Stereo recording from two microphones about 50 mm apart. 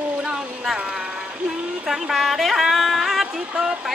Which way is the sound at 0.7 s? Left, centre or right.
Centre.